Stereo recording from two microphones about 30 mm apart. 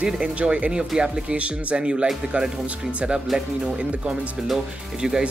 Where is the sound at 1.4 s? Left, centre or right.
Right.